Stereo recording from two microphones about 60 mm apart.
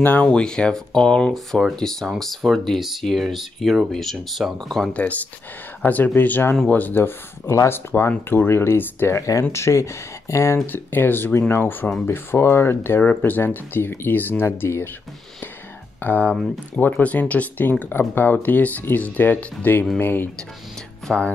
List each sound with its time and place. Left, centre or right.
0.2 s speech: centre
4.9 s speech: left
7.4 s speech: left
9.1 s speech: left
10.7 s speech: left
14.4 s speech: left
16.0 s speech: left
21.1 s speech: centre